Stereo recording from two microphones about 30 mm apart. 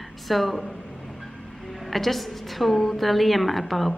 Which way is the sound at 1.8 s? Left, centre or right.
Centre.